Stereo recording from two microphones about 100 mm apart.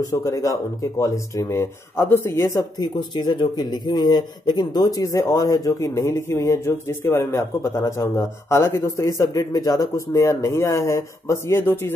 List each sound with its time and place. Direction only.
0.0 s speech: 35° left (ahead or behind)